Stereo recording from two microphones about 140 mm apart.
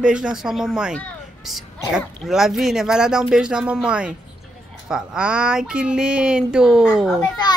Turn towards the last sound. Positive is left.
turn(degrees=30)  # may be behind; listen again after turning